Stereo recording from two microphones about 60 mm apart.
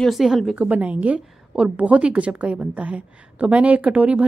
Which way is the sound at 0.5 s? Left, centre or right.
Right.